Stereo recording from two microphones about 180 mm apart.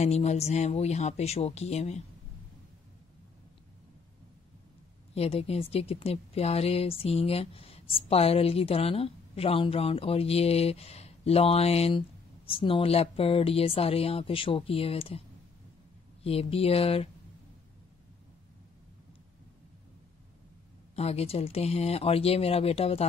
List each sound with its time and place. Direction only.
0.0 s speech: 40° left (ahead or behind)
5.1 s speech: 35° left (ahead or behind)
20.9 s speech: 35° left (ahead or behind)